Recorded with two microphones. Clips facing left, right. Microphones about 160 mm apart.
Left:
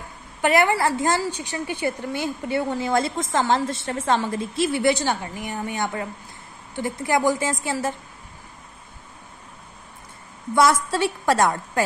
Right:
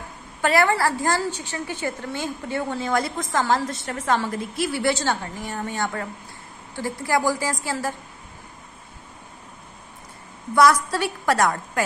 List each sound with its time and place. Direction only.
0.4 s a woman's voice: 20° left (ahead or behind)
2.9 s a woman's voice: 25° left (ahead or behind)
10.5 s a woman's voice: 25° left (ahead or behind)